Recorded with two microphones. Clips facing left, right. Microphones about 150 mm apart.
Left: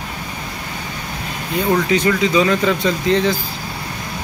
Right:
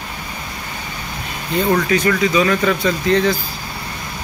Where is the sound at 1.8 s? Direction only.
20° left (ahead or behind).